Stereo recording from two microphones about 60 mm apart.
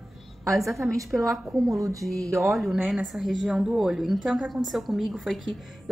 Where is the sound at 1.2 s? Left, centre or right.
Right.